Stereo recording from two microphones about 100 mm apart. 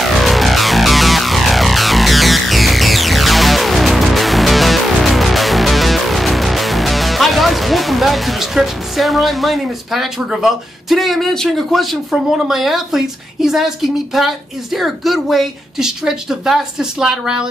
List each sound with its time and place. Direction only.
0.0 s music: centre (ahead or behind)